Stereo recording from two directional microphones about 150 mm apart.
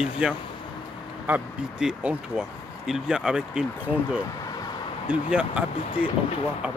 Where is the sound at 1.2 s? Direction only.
10° right (ahead or behind).